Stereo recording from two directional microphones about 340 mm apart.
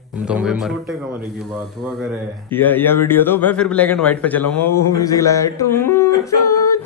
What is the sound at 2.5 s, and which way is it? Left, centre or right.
A man's voice, centre.